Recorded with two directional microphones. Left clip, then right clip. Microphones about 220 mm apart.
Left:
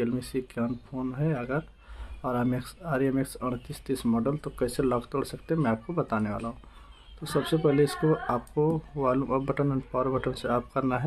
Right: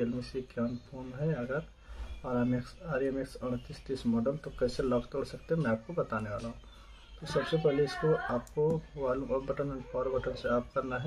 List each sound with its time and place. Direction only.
0.0 s speech: 45° left (ahead or behind)
7.6 s speech: 45° left (ahead or behind)